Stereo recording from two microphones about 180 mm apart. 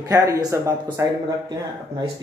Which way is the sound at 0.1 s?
20° right (ahead or behind).